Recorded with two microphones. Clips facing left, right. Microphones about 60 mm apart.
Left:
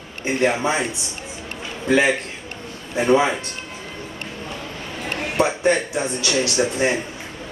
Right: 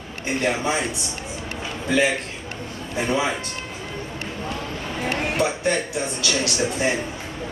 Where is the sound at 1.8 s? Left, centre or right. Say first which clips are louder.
Left 3 dB; left.